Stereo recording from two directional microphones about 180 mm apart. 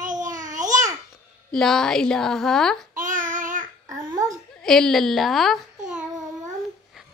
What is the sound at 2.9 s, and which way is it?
Child singing, 50° right (ahead or behind).